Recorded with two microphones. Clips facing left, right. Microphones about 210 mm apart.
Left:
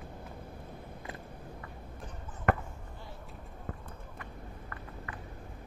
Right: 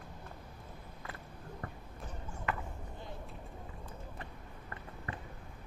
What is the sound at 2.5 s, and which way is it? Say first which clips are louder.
Basketball bounce: left 9 dB; 55° left (ahead or behind).